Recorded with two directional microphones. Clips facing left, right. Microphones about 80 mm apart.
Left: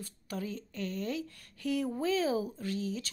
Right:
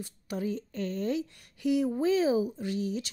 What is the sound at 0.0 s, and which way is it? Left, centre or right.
A woman's voice, centre.